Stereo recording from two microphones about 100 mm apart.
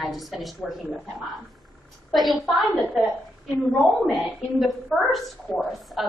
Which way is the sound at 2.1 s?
Centre (ahead or behind).